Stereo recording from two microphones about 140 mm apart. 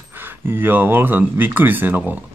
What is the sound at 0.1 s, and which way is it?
Speech, 15° right (ahead or behind).